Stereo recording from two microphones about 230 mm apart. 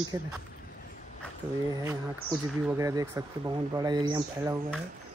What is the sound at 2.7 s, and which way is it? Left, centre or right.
Speech, centre.